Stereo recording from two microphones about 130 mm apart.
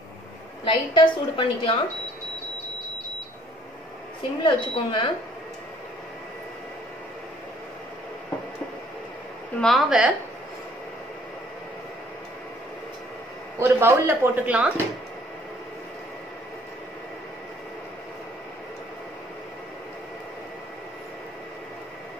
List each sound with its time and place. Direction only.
0.7 s a woman's voice: 40° left (ahead or behind)
4.4 s a woman's voice: 40° left (ahead or behind)
9.6 s speech: centre (ahead or behind)
13.6 s speech: 20° right (ahead or behind)